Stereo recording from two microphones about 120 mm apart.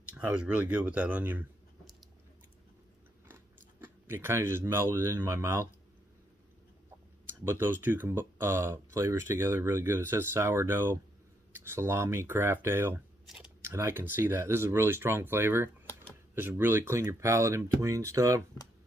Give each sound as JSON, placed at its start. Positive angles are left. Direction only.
{"t": 0.1, "sound": "speech", "side_deg": -10}
{"t": 3.8, "sound": "speech", "side_deg": -20}
{"t": 7.4, "sound": "speech", "side_deg": -20}